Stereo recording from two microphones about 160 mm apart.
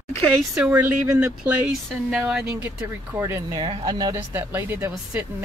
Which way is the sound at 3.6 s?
30° right (ahead or behind).